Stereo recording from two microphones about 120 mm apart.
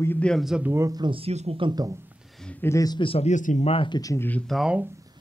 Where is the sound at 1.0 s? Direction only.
45° right (ahead or behind).